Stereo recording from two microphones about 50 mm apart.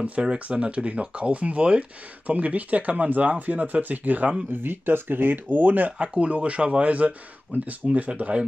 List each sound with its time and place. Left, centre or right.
0.0 s speech: right
4.5 s speech: right
5.9 s speech: right